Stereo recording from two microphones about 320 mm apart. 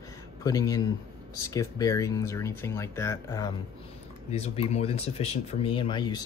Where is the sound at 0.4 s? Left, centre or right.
Centre.